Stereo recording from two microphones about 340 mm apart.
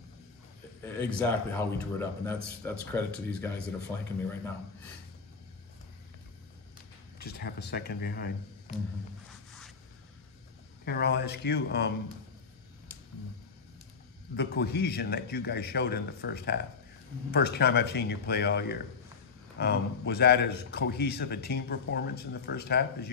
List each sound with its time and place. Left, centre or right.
0.8 s a man's voice: centre
7.2 s a man's voice: left
10.9 s a man's voice: left
14.3 s a man's voice: left